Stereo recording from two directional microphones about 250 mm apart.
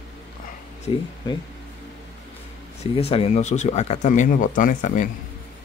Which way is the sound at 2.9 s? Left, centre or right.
Left.